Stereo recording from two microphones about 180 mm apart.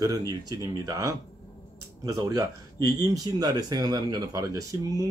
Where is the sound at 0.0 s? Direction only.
20° right (ahead or behind).